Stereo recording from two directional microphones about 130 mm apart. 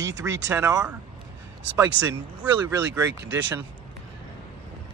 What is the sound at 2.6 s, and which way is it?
Speech, 15° right (ahead or behind).